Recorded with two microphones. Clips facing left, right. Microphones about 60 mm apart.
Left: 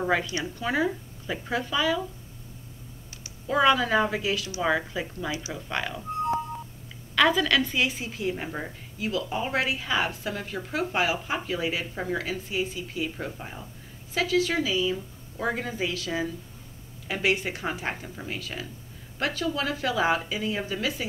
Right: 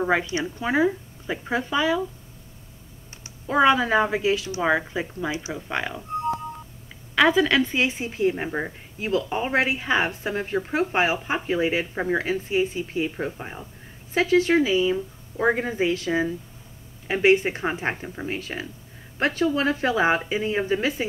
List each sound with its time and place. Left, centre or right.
0.0 s a woman's voice: right
3.4 s a woman's voice: right
7.2 s a woman's voice: right
8.9 s a woman's voice: right